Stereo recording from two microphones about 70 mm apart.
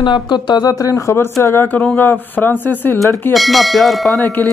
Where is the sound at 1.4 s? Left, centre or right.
Left.